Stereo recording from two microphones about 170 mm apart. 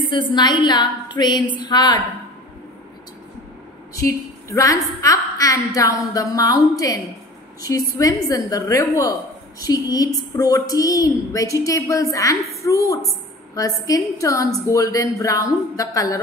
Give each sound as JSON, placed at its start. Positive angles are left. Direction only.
{"t": 0.1, "sound": "a woman's voice", "side_deg": 25}
{"t": 3.9, "sound": "a woman's voice", "side_deg": 20}